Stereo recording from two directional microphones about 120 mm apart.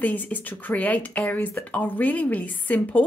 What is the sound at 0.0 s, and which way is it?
Speech, 15° left (ahead or behind).